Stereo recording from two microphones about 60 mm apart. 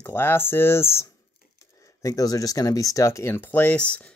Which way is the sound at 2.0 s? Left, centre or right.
Left.